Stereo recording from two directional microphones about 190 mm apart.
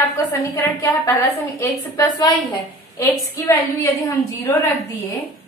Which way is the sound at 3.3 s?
15° left (ahead or behind).